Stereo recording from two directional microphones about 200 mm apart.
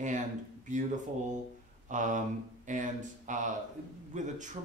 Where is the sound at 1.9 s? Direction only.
40° right (ahead or behind).